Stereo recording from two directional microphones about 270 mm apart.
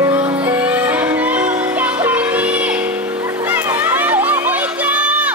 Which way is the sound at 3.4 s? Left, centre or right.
Centre.